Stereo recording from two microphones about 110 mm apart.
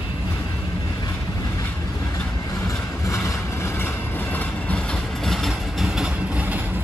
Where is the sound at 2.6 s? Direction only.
30° left (ahead or behind).